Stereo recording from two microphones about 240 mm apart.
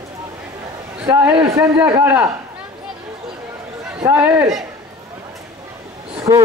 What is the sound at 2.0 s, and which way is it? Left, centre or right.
Speech, centre.